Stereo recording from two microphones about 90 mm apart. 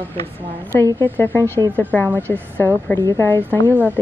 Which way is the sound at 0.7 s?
30° left (ahead or behind).